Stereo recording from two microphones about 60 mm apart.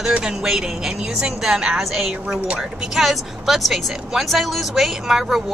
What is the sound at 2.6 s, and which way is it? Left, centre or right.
Speech, centre.